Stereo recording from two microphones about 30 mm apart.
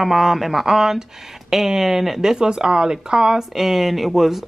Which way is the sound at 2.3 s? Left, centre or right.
Right.